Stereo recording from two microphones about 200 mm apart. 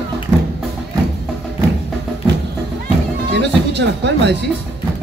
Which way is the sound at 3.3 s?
60° right (ahead or behind).